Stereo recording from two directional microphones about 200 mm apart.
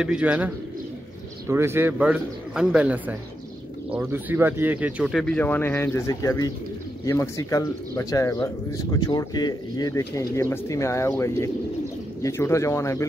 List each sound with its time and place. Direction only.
0.0 s a man's voice: 5° right (ahead or behind)
1.5 s a man's voice: 10° right (ahead or behind); by 13.0 s 15° left (ahead or behind)